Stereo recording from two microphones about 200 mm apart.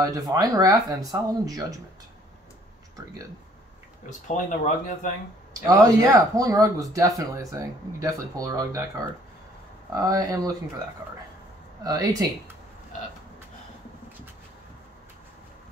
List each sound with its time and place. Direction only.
0.0 s speech: 20° right (ahead or behind)
4.3 s speech: 40° left (ahead or behind)
5.7 s speech: 15° right (ahead or behind)
9.9 s speech: 20° right (ahead or behind)
11.8 s speech: 20° right (ahead or behind)